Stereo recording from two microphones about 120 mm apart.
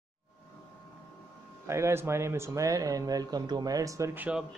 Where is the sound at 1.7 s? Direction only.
20° right (ahead or behind).